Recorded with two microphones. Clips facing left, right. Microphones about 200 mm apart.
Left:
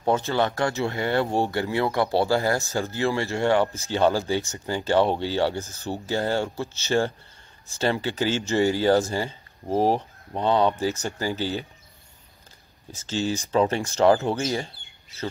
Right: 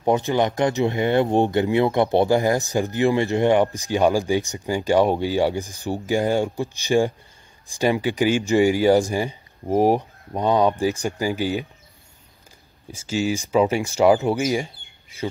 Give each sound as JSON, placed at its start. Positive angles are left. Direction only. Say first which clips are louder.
{"t": 0.0, "sound": "speech", "louder": "right 3 dB", "side_deg": -15}
{"t": 12.9, "sound": "speech", "louder": "right 3 dB", "side_deg": -10}